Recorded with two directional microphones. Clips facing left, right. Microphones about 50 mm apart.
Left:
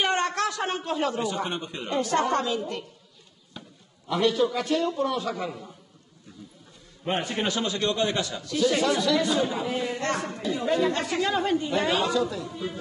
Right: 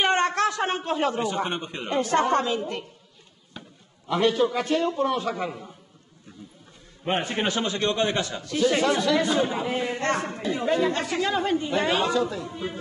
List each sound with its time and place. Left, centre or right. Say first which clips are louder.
0.0 s a man's voice: right 3 dB; right
3.6 s a sound: right 1 dB; right
4.1 s a man's voice: right 1 dB; right
7.1 s a man's voice: right 2 dB; right